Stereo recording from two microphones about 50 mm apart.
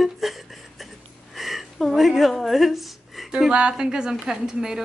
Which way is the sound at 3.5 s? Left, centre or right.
Centre.